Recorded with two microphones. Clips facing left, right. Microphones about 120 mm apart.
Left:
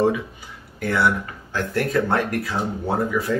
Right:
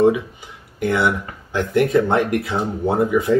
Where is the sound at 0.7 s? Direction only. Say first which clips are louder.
Right 2 dB; 20° right (ahead or behind).